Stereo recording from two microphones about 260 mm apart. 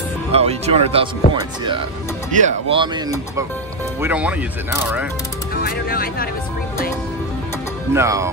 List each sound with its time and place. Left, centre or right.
0.3 s speech: right; by 4.5 s centre
5.6 s speech: left
7.9 s speech: centre